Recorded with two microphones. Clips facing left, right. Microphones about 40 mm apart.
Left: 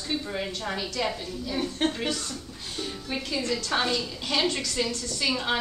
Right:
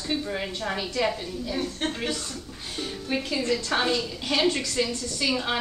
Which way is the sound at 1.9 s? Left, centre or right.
Centre.